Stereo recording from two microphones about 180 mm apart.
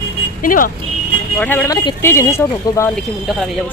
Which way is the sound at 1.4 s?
10° left (ahead or behind).